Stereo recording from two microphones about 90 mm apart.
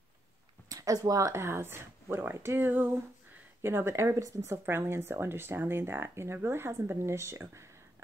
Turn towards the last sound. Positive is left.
turn(degrees=-30)  # may be behind; listen again after turning